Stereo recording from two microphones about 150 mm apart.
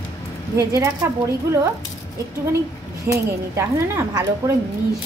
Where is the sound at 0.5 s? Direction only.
20° right (ahead or behind).